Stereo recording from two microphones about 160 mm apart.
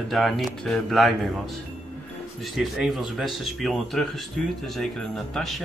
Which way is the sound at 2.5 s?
Centre (ahead or behind).